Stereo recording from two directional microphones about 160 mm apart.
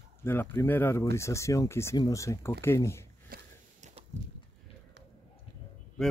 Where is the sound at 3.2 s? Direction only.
60° right (ahead or behind).